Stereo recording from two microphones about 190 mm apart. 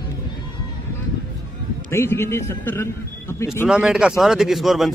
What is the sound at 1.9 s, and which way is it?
A man's voice, 15° left (ahead or behind).